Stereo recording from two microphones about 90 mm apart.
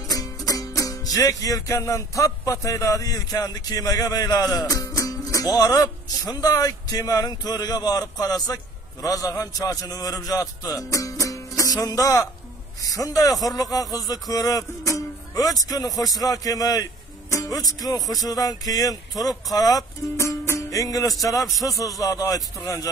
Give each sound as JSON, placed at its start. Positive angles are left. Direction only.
{"t": 0.1, "sound": "music", "side_deg": 45}